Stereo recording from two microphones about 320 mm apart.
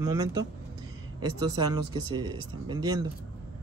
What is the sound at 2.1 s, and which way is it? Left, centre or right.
Speech, centre.